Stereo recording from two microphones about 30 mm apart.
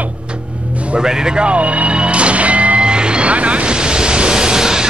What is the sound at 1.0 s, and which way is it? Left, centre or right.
Speech, right.